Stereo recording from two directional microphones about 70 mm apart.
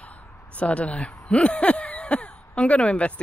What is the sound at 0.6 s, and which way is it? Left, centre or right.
Speech, centre.